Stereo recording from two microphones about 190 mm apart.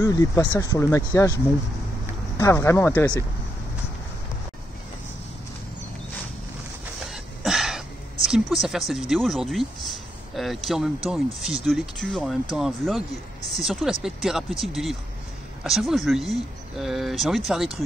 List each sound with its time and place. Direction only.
0.0 s speech: 15° left (ahead or behind)
7.1 s throat clearing: centre (ahead or behind)
8.3 s speech: centre (ahead or behind)